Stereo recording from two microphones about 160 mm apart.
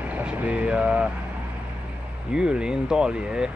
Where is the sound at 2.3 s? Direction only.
5° right (ahead or behind).